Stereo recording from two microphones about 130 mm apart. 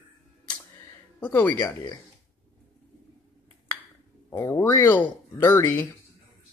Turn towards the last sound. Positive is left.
turn(degrees=20)  # may be behind; listen again after turning